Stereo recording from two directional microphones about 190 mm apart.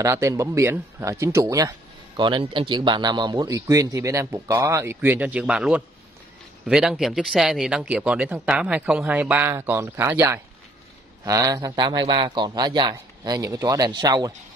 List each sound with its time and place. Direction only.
0.0 s a man's voice: 15° right (ahead or behind)